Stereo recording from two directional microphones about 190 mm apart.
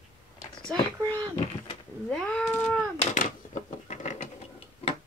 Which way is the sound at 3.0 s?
40° left (ahead or behind).